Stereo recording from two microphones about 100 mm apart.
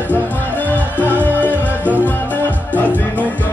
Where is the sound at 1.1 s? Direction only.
15° right (ahead or behind).